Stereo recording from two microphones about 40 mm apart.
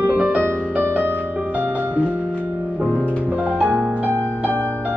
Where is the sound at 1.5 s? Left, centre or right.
Right.